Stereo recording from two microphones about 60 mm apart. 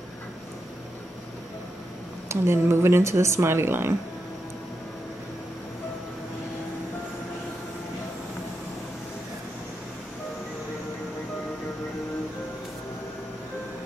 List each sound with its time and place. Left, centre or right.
2.2 s speech: right